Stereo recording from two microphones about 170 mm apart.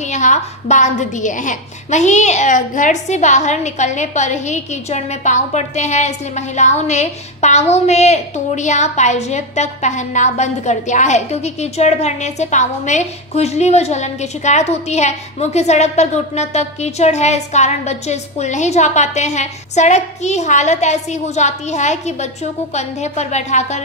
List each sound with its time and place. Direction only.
0.1 s a woman's voice: 45° left (ahead or behind)